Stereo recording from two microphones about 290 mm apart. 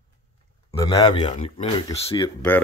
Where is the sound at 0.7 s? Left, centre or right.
Centre.